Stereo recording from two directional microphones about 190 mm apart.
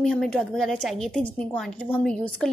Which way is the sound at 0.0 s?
Centre (ahead or behind).